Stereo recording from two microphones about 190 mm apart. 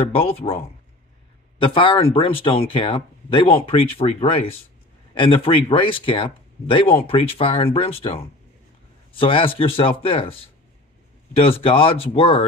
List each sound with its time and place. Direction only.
0.1 s speech: 30° left (ahead or behind)
1.6 s speech: 25° left (ahead or behind)